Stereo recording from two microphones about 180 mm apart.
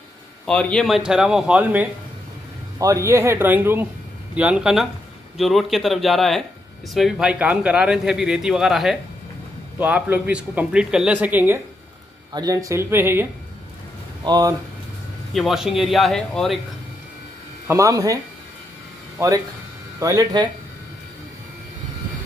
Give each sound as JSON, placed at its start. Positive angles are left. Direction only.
{"t": 0.5, "sound": "speech", "side_deg": 5}
{"t": 14.2, "sound": "speech", "side_deg": -25}
{"t": 15.3, "sound": "speech", "side_deg": 0}
{"t": 17.6, "sound": "speech", "side_deg": -15}